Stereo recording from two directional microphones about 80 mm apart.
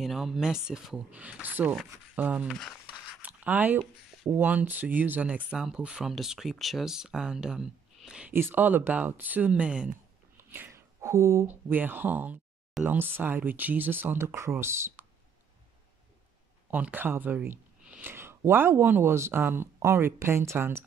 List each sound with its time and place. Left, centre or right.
0.0 s speech: centre; by 2.4 s right
2.4 s speech: centre
3.2 s a sound: centre
4.3 s speech: right
8.3 s speech: right
10.3 s a sound: right
11.4 s speech: right
16.7 s speech: right